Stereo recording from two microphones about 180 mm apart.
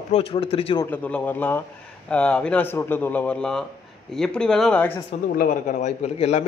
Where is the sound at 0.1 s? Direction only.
30° left (ahead or behind).